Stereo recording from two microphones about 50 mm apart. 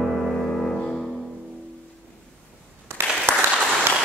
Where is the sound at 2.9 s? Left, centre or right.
Right.